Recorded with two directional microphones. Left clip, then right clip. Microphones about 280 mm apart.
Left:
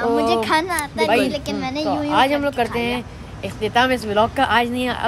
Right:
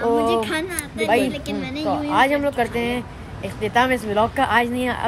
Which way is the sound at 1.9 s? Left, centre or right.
Centre.